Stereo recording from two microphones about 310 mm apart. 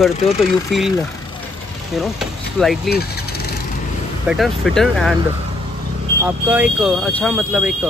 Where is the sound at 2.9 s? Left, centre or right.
Left.